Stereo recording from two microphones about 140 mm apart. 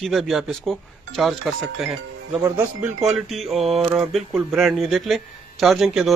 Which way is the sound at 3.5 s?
45° right (ahead or behind).